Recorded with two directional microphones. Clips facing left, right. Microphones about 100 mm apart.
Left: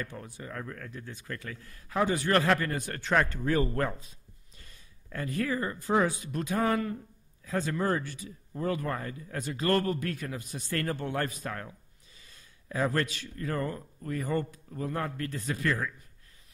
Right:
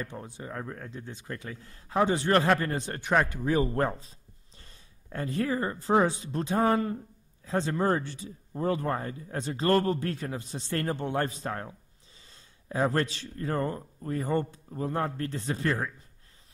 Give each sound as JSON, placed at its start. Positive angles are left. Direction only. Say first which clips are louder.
{"t": 0.0, "sound": "speech", "louder": "right 1 dB", "side_deg": -25}
{"t": 3.0, "sound": "speech", "louder": "right 1 dB", "side_deg": -15}
{"t": 4.6, "sound": "speech", "louder": "right 1 dB", "side_deg": -30}